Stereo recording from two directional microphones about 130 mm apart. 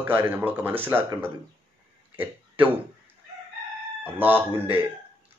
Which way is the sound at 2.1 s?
15° right (ahead or behind).